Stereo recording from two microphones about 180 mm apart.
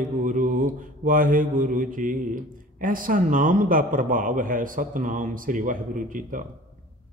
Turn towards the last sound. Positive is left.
turn(degrees=-50)  # may be behind; listen again after turning